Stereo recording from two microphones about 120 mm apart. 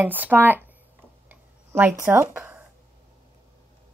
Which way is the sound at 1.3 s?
15° right (ahead or behind).